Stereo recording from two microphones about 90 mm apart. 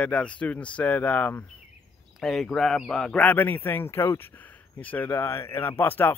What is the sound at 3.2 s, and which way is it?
Speech, 20° left (ahead or behind).